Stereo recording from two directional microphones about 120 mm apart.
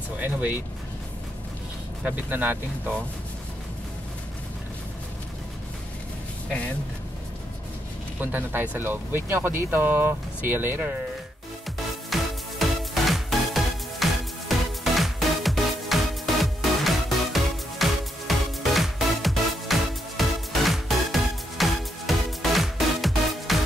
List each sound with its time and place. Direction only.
0.2 s speech: 15° right (ahead or behind)
2.0 s speech: 15° right (ahead or behind)
8.2 s speech: 15° right (ahead or behind)
12.1 s music: centre (ahead or behind)